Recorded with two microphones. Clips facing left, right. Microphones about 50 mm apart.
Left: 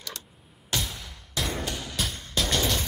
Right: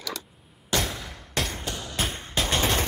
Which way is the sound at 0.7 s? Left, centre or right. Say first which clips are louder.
Right 5 dB; right.